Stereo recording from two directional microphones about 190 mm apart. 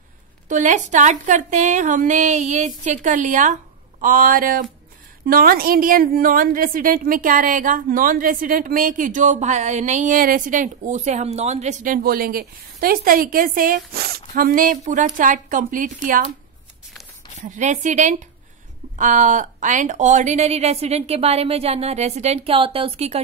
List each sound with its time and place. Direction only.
0.5 s a woman's voice: 40° right (ahead or behind)
17.4 s a woman's voice: 40° right (ahead or behind)